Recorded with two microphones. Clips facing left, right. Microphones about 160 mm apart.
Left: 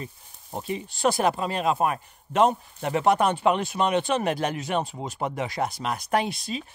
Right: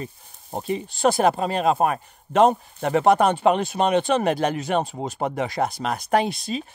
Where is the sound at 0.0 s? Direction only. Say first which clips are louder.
Right 4 dB; 35° right (ahead or behind).